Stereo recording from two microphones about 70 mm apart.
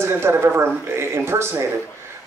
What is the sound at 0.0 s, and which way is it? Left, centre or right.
Speech, right.